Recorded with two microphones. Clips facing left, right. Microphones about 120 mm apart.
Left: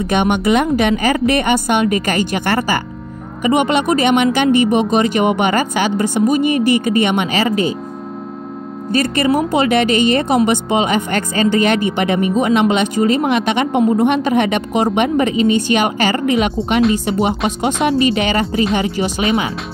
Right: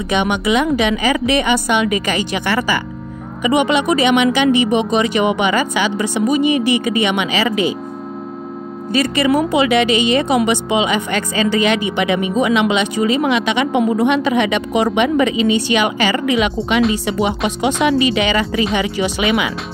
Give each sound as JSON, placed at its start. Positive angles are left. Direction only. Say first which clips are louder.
{"t": 0.0, "sound": "speech", "louder": "left 2 dB", "side_deg": 50}
{"t": 8.9, "sound": "speech", "louder": "even", "side_deg": 45}